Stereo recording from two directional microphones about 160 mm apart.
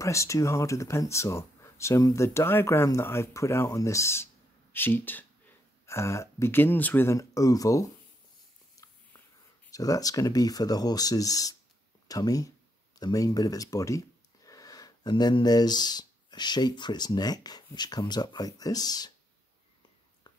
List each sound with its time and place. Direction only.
0.0 s speech: 20° left (ahead or behind)
8.8 s a sound: 20° left (ahead or behind)
9.7 s speech: 20° left (ahead or behind)